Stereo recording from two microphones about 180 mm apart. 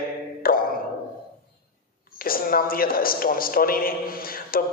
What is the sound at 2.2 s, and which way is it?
A man's voice, 55° left (ahead or behind).